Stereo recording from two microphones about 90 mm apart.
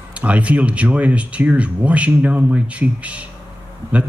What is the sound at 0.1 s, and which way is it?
Speech, 15° right (ahead or behind).